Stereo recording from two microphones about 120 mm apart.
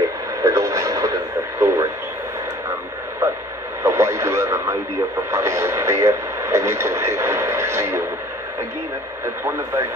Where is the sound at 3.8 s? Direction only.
25° right (ahead or behind).